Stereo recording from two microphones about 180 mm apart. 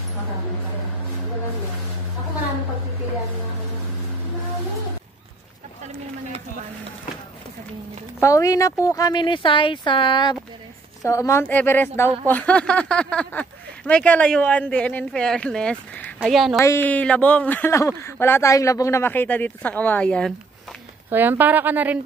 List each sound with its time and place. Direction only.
8.2 s speech: 15° left (ahead or behind)
11.1 s speech: 15° left (ahead or behind); by 16.5 s centre (ahead or behind)
16.5 s speech: 15° left (ahead or behind)
21.1 s a woman's voice: 10° right (ahead or behind)